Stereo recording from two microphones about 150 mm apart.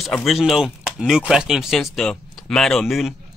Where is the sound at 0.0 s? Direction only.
Centre (ahead or behind).